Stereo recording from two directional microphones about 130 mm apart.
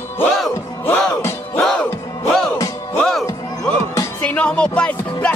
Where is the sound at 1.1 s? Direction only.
20° left (ahead or behind).